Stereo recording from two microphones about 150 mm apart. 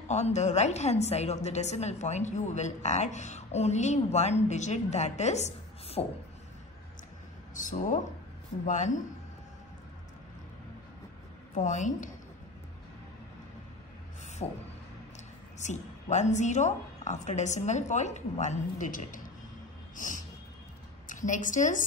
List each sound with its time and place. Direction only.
0.1 s a woman's voice: 50° left (ahead or behind)
7.5 s a woman's voice: 60° left (ahead or behind)
11.5 s a woman's voice: 55° left (ahead or behind)
14.4 s a woman's voice: 45° left (ahead or behind)
15.6 s a woman's voice: 50° left (ahead or behind)
20.0 s a sound: 60° left (ahead or behind)
21.1 s a woman's voice: 60° left (ahead or behind)